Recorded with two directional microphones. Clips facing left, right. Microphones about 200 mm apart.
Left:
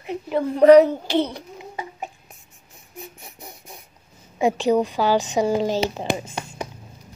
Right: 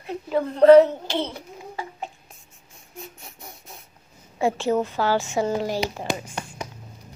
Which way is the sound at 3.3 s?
20° left (ahead or behind).